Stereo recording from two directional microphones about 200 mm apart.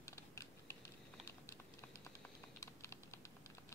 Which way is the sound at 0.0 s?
15° left (ahead or behind).